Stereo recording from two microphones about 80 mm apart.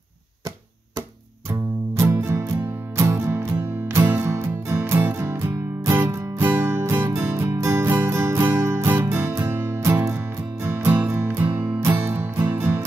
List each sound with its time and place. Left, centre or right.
1.5 s music: right